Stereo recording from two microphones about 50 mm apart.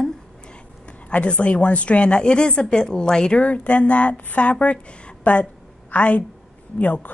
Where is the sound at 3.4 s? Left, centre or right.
Left.